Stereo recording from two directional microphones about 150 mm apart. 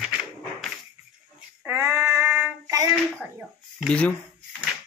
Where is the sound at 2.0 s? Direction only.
5° right (ahead or behind).